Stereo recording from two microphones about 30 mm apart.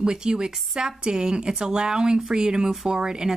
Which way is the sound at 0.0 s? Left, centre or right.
Right.